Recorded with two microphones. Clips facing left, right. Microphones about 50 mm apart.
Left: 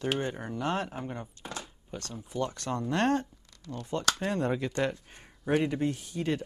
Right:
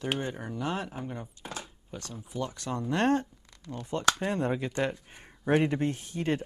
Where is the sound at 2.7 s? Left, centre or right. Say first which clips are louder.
Right 1 dB; centre.